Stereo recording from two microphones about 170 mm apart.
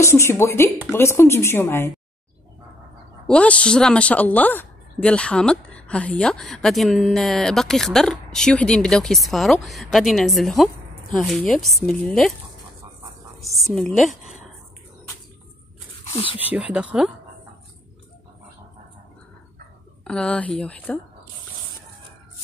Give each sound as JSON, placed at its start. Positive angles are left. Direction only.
{"t": 0.0, "sound": "speech", "side_deg": 15}
{"t": 3.3, "sound": "a woman's voice", "side_deg": 5}
{"t": 13.9, "sound": "speech", "side_deg": 0}
{"t": 16.3, "sound": "speech", "side_deg": -10}
{"t": 20.1, "sound": "speech", "side_deg": 5}